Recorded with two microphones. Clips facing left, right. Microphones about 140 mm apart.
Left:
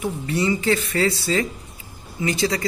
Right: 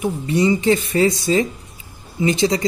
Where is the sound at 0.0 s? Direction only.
20° right (ahead or behind).